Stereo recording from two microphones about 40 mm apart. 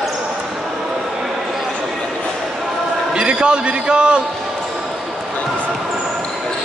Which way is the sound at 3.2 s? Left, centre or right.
Right.